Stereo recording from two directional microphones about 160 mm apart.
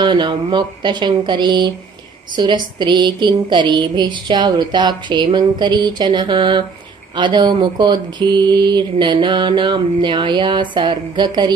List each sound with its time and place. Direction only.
0.0 s mantra: 30° right (ahead or behind)